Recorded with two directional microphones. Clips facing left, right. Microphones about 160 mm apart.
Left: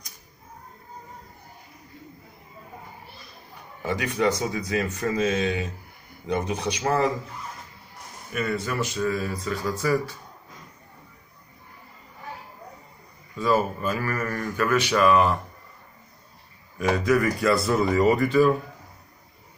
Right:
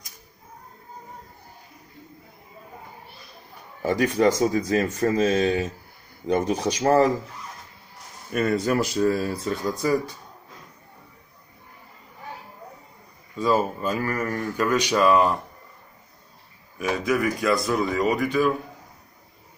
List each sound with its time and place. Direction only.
3.8 s speech: 40° right (ahead or behind)
8.3 s speech: 40° right (ahead or behind)
9.8 s speech: 15° right (ahead or behind)
13.4 s speech: 15° right (ahead or behind)
16.7 s speech: 15° right (ahead or behind)
17.1 s speech: centre (ahead or behind)